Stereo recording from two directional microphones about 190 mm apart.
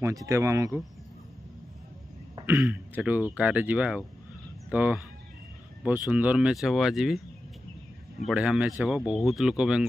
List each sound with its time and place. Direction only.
0.0 s speech: 15° right (ahead or behind)
2.4 s speech: 10° right (ahead or behind)
8.3 s speech: 5° right (ahead or behind)